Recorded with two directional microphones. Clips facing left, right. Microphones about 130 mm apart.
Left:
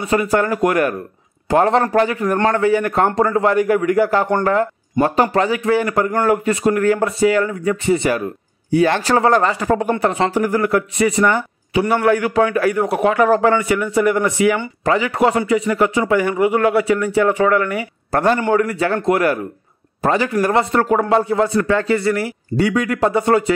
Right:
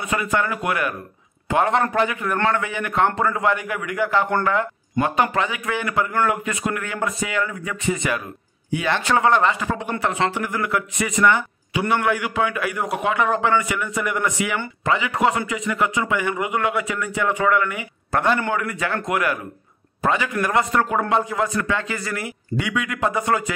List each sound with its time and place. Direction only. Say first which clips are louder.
0.0 s a man's voice: left 6 dB; 35° left (ahead or behind)